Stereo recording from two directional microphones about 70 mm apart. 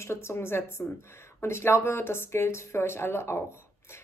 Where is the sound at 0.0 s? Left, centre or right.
Left.